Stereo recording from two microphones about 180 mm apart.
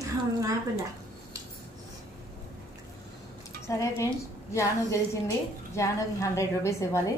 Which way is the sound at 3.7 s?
15° left (ahead or behind).